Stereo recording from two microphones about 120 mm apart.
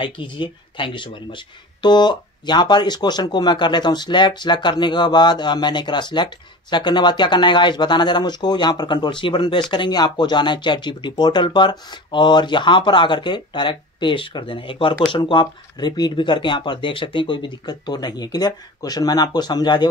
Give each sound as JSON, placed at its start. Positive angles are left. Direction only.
{"t": 0.0, "sound": "speech", "side_deg": 45}